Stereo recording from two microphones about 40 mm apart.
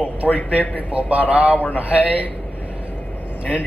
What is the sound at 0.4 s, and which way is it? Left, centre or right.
Speech, left.